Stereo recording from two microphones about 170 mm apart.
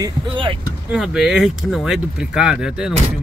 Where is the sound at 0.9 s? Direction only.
Centre (ahead or behind).